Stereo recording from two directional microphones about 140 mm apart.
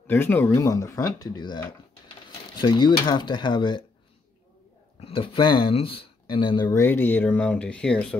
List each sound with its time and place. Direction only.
0.0 s speech: 15° left (ahead or behind); by 3.8 s 35° left (ahead or behind)
5.0 s speech: 40° left (ahead or behind)
6.7 s speech: 15° left (ahead or behind)